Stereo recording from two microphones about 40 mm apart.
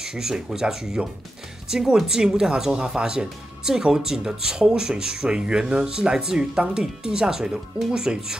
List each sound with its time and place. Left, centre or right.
0.0 s speech: centre